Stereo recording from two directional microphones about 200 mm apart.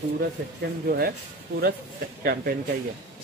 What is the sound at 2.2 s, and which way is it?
Speech, 50° right (ahead or behind).